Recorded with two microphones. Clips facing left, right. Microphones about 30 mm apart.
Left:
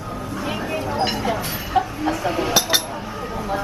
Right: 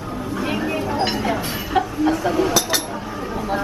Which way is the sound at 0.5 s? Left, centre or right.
Centre.